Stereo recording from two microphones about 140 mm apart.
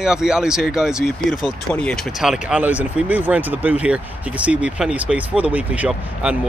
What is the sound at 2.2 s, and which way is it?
Speech, 5° right (ahead or behind).